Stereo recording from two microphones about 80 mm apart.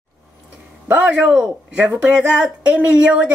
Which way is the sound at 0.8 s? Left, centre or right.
Centre.